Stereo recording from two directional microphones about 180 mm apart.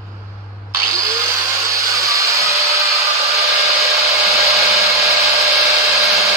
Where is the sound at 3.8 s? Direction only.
15° right (ahead or behind).